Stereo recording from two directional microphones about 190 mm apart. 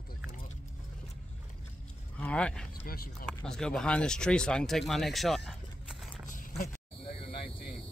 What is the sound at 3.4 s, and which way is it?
Speech, 5° left (ahead or behind).